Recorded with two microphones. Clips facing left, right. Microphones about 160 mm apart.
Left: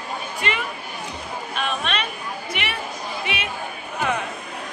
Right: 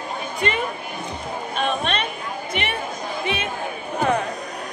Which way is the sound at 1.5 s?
40° right (ahead or behind).